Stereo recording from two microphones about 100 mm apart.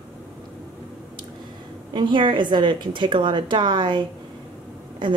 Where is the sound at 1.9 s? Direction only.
50° right (ahead or behind).